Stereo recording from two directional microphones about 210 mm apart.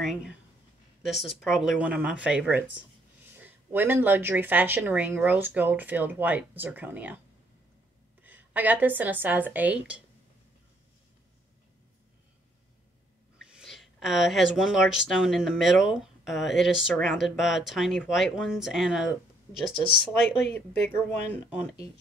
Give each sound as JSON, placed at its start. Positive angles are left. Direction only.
{"t": 0.0, "sound": "speech", "side_deg": 0}
{"t": 8.2, "sound": "a woman's voice", "side_deg": -10}
{"t": 13.5, "sound": "speech", "side_deg": 0}
{"t": 19.9, "sound": "speech", "side_deg": 50}